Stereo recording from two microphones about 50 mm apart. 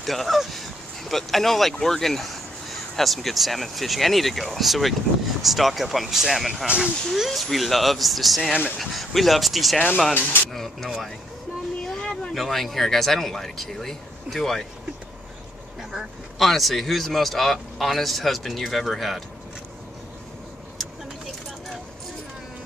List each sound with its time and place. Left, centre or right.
0.0 s speech: centre
10.1 s speech: left
10.5 s speech: centre
12.0 s a sound: left
12.4 s speech: centre
16.3 s speech: centre